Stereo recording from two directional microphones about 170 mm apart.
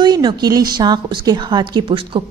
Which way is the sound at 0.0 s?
25° right (ahead or behind).